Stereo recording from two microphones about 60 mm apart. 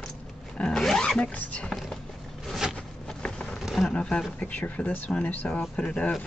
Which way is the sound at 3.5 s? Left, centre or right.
Centre.